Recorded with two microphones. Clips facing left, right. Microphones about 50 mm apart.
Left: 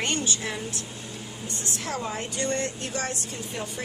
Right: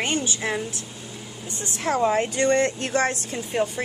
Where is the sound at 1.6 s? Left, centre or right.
Right.